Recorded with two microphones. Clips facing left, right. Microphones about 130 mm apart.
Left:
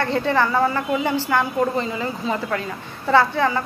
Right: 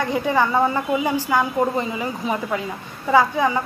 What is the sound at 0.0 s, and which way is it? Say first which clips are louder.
A woman's voice: even; 10° right (ahead or behind).